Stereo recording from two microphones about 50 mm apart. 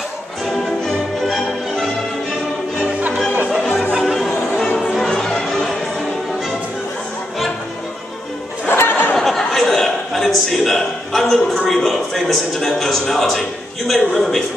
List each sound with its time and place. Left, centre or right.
0.5 s music: centre
3.5 s music: centre
4.0 s music: centre
8.6 s a sound: left
9.1 s chuckle: centre